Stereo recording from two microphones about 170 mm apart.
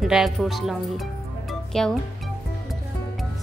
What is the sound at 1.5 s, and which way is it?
Music, 5° left (ahead or behind).